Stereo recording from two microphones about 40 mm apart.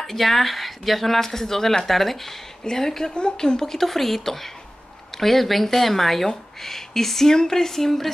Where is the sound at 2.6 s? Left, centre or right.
Centre.